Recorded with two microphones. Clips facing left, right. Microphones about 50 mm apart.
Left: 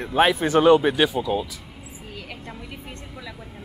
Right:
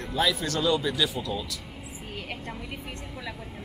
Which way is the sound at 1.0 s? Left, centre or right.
Centre.